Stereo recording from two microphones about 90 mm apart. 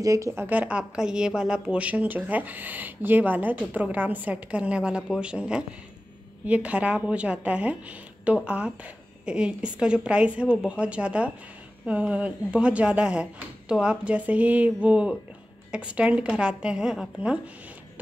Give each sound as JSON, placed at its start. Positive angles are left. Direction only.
{"t": 0.0, "sound": "a woman's voice", "side_deg": -40}